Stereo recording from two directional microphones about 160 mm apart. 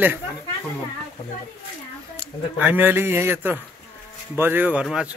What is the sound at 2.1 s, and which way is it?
Speech, 10° right (ahead or behind).